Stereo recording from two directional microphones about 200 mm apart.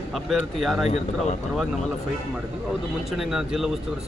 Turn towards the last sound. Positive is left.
turn(degrees=0)  # may be behind; listen again after turning